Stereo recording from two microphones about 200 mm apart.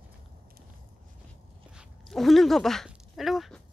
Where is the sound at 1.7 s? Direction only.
Centre (ahead or behind).